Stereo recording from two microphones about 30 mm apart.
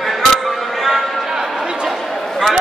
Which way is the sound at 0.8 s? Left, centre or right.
Centre.